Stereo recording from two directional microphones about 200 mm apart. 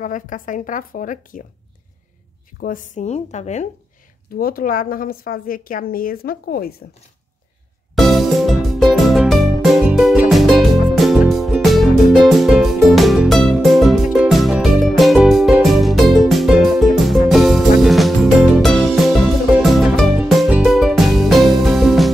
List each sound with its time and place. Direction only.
0.0 s a woman's voice: 40° left (ahead or behind)
2.6 s a woman's voice: 40° left (ahead or behind)
4.4 s a woman's voice: 45° left (ahead or behind)
7.9 s music: centre (ahead or behind)